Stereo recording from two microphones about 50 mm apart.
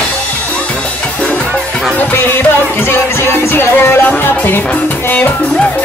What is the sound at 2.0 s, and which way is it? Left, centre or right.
Music, left.